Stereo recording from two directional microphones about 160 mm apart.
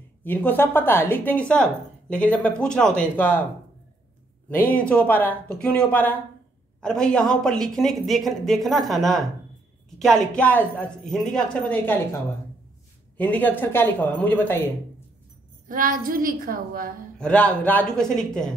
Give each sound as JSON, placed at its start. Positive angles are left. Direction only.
{"t": 0.2, "sound": "a woman's voice", "side_deg": 10}
{"t": 4.5, "sound": "a woman's voice", "side_deg": 10}
{"t": 13.2, "sound": "a woman's voice", "side_deg": 10}
{"t": 15.7, "sound": "a woman's voice", "side_deg": -60}
{"t": 17.2, "sound": "speech", "side_deg": 10}